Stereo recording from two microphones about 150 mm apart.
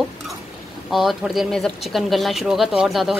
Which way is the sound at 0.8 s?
Centre (ahead or behind).